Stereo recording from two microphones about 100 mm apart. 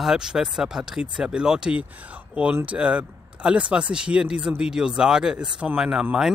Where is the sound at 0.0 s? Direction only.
5° right (ahead or behind).